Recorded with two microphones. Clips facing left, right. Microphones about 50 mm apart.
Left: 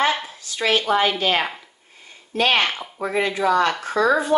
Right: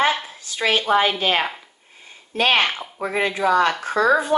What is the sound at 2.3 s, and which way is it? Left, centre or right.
Speech, right.